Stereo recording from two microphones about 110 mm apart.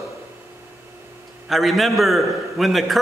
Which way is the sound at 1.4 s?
Centre (ahead or behind).